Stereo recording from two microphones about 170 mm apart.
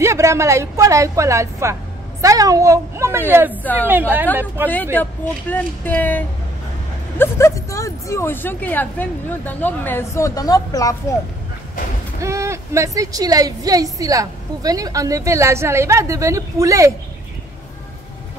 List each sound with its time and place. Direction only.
0.0 s a woman's voice: 15° right (ahead or behind)
5.5 s speech: 10° left (ahead or behind)
12.2 s a woman's voice: 15° right (ahead or behind)